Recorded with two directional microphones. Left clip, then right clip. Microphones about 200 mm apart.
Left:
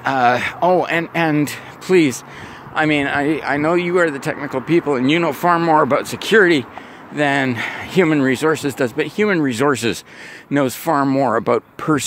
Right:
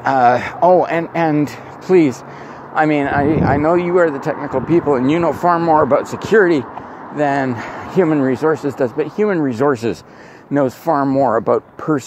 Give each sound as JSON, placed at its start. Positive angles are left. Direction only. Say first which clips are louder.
{"t": 0.0, "sound": "speech", "louder": "right 3 dB", "side_deg": 30}